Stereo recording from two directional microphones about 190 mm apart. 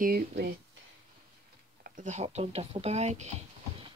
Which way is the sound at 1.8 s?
40° right (ahead or behind).